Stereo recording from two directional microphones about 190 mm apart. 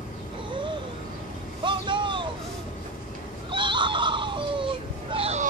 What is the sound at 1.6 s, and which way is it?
Vehicle, 25° right (ahead or behind).